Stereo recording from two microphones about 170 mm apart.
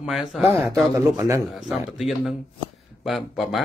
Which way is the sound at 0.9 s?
15° right (ahead or behind).